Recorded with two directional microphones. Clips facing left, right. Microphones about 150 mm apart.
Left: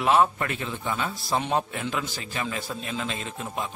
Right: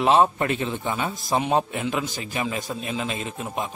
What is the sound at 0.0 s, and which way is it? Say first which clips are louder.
Speech: right 3 dB; 25° right (ahead or behind).